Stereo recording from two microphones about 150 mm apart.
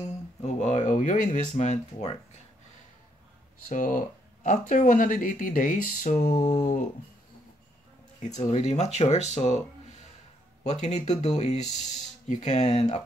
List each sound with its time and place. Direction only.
0.4 s speech: 50° left (ahead or behind)
3.6 s speech: 60° left (ahead or behind)
8.4 s speech: 50° left (ahead or behind)
10.6 s speech: 50° left (ahead or behind)